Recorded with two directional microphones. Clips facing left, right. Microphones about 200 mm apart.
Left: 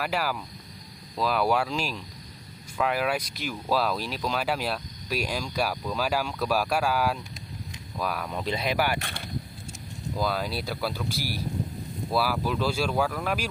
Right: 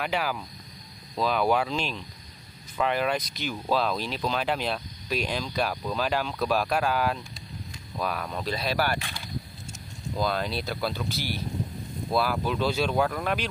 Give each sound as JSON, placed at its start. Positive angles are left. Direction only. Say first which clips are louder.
{"t": 0.0, "sound": "speech", "louder": "even", "side_deg": 5}
{"t": 9.0, "sound": "speech", "louder": "left 2 dB", "side_deg": 55}
{"t": 10.1, "sound": "speech", "louder": "right 1 dB", "side_deg": 5}
{"t": 12.1, "sound": "speech", "louder": "right 1 dB", "side_deg": 5}